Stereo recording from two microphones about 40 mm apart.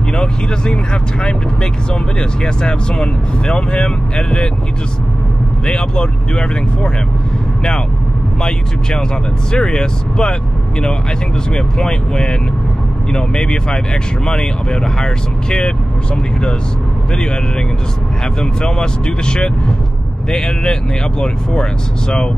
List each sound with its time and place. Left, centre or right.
0.1 s speech: left
2.1 s speech: centre
5.7 s speech: left
8.4 s speech: centre
11.5 s speech: centre
18.4 s speech: centre